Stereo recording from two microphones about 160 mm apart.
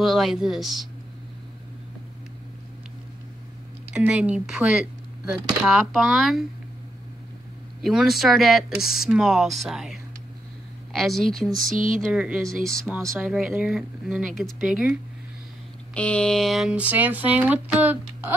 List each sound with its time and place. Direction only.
0.0 s speech: centre (ahead or behind)
3.9 s speech: 5° right (ahead or behind)
7.8 s speech: centre (ahead or behind)
11.6 s speech: 55° right (ahead or behind)
12.1 s speech: 5° right (ahead or behind)
12.6 s speech: 5° left (ahead or behind)
12.9 s speech: 10° right (ahead or behind)
15.9 s speech: 5° left (ahead or behind); by 17.9 s 10° right (ahead or behind)